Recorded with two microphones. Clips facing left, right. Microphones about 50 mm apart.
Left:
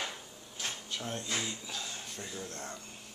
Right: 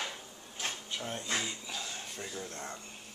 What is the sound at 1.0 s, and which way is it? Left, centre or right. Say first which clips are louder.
Speech: right 1 dB; centre.